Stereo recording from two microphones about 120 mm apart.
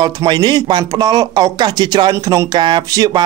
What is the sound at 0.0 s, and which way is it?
Speech, 35° right (ahead or behind).